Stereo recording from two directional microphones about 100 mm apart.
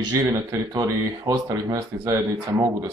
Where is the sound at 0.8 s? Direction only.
35° right (ahead or behind).